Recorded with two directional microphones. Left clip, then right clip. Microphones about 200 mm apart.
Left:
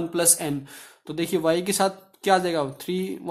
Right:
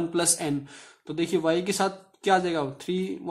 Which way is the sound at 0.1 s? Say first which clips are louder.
Left 2 dB; 10° left (ahead or behind).